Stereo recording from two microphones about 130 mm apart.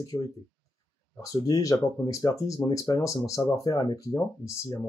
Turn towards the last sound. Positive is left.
turn(degrees=25)  # may be behind; listen again after turning